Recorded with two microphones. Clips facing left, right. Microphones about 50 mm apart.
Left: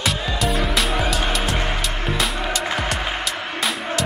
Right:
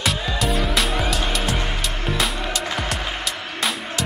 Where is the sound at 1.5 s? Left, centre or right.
Centre.